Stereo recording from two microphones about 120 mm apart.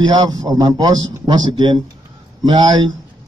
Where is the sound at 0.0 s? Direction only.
35° right (ahead or behind).